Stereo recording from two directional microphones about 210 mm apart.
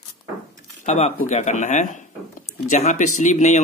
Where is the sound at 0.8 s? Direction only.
30° left (ahead or behind).